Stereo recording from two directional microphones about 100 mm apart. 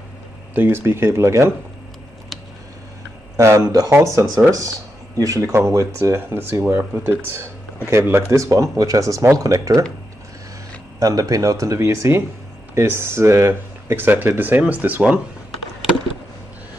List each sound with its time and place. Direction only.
0.6 s speech: 20° right (ahead or behind)
3.3 s speech: 30° right (ahead or behind)
11.0 s speech: 35° right (ahead or behind); by 15.1 s 20° right (ahead or behind)